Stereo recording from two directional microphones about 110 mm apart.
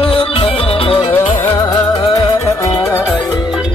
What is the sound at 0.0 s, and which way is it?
Music, 55° left (ahead or behind).